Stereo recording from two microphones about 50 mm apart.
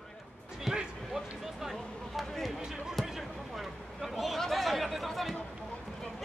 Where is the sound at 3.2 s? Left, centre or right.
Centre.